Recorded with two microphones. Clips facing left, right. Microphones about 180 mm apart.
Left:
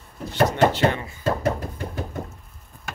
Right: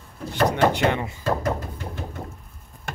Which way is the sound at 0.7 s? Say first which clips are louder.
Even; 20° right (ahead or behind).